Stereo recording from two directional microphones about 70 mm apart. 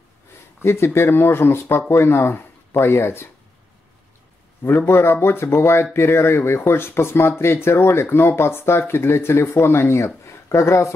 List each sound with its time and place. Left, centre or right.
0.6 s speech: left
4.6 s speech: left